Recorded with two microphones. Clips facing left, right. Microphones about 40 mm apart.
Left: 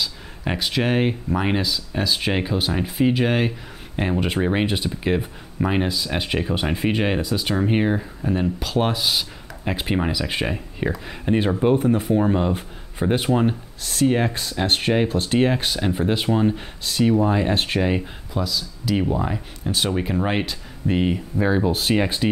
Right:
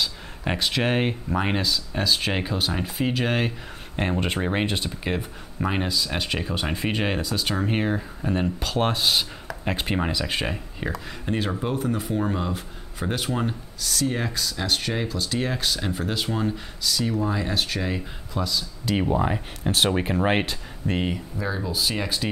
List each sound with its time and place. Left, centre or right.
0.0 s speech: centre
8.2 s speech: centre
11.6 s speech: left
12.2 s speech: left
13.7 s speech: left
18.4 s speech: centre
20.8 s speech: centre
21.4 s speech: left
21.9 s speech: left